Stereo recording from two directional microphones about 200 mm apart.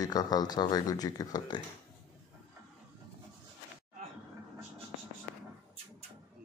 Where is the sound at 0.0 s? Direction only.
20° left (ahead or behind).